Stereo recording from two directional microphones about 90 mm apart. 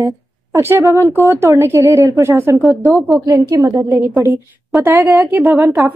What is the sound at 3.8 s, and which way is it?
Speech, 35° right (ahead or behind).